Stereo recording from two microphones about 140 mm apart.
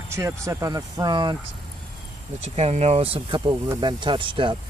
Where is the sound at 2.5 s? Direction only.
50° right (ahead or behind).